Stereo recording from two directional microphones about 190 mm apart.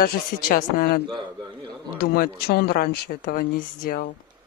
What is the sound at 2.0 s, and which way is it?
Speech, 50° left (ahead or behind).